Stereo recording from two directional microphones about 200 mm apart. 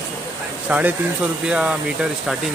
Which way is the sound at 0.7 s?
10° right (ahead or behind).